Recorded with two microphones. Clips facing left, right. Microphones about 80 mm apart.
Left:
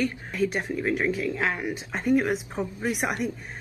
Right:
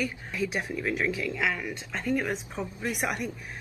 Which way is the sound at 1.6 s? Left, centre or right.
Centre.